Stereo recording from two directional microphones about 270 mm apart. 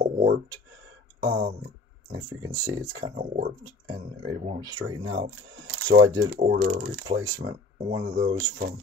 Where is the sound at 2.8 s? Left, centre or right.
Right.